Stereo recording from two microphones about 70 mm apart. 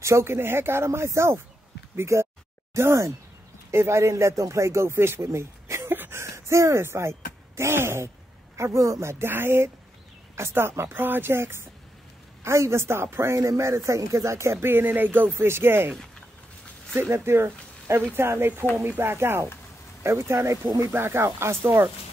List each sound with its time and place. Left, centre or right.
0.0 s a man's voice: right
8.5 s a man's voice: right
9.2 s speech: right
16.9 s speech: right